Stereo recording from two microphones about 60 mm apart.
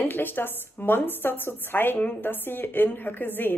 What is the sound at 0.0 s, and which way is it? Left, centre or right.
A woman's voice, left.